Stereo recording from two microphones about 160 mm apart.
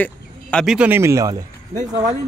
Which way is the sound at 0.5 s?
5° right (ahead or behind).